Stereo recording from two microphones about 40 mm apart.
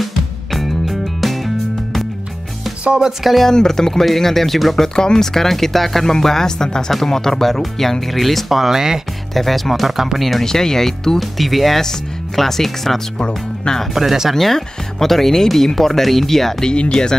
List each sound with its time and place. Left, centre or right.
0.0 s music: centre
3.3 s speech: centre
4.8 s speech: centre
9.3 s speech: centre
10.4 s speech: centre
13.9 s speech: centre
14.3 s speech: centre
16.7 s speech: left